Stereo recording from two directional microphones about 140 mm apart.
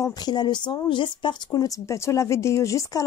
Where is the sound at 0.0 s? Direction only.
30° left (ahead or behind).